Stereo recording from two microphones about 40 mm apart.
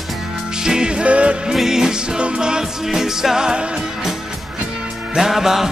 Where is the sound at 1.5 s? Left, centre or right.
Centre.